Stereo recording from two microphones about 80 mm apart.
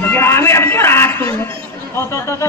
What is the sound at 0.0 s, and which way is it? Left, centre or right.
Music, left.